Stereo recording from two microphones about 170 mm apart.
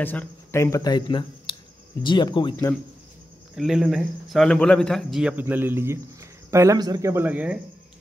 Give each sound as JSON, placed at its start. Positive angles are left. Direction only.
{"t": 0.0, "sound": "speech", "side_deg": 10}
{"t": 3.5, "sound": "speech", "side_deg": -5}